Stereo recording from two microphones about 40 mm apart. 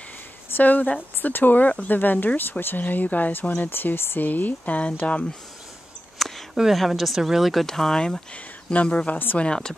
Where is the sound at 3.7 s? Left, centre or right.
Left.